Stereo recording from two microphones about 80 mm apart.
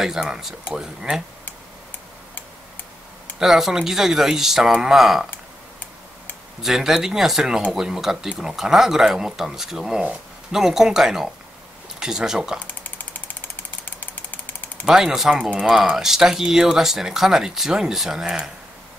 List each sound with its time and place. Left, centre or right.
0.0 s speech: centre
3.3 s speech: centre
6.6 s speech: centre
12.8 s engine: left
14.9 s speech: centre